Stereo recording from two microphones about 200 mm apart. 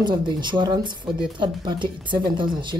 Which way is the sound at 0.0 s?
25° right (ahead or behind).